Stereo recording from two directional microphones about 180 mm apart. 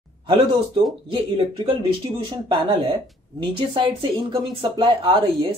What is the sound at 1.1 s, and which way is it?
Speech, 30° right (ahead or behind).